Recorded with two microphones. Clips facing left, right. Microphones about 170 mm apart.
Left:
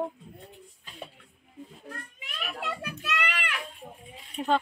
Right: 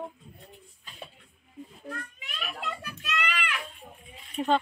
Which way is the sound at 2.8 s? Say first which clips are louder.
Left 1 dB; 60° left (ahead or behind).